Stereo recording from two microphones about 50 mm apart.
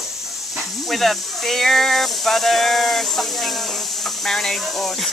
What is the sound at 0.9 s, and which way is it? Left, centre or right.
Speech, centre.